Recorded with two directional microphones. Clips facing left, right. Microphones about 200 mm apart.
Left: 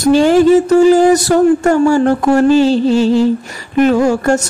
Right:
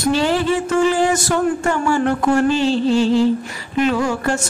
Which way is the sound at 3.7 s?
45° left (ahead or behind).